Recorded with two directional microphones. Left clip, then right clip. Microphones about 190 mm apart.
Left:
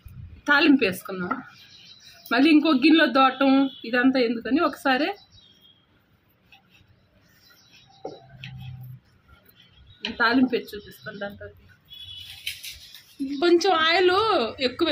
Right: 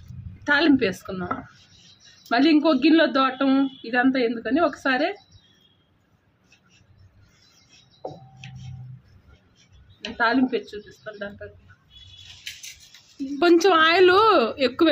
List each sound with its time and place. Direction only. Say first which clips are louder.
0.4 s speech: left 1 dB; 10° left (ahead or behind)
10.1 s speech: even; 10° left (ahead or behind)
13.4 s a woman's voice: right 3 dB; 55° right (ahead or behind)